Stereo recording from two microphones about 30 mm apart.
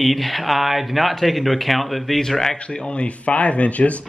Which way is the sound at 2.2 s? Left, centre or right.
Centre.